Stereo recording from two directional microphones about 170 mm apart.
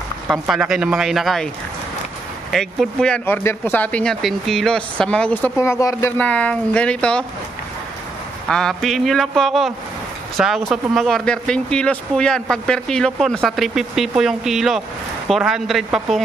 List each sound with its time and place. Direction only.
0.3 s speech: centre (ahead or behind)
2.5 s speech: centre (ahead or behind)
8.5 s speech: 5° left (ahead or behind)